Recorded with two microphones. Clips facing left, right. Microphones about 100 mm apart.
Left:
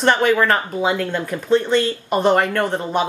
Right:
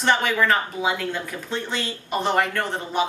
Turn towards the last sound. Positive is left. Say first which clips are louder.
# left 5 dB
turn(degrees=50)  # may be behind; listen again after turning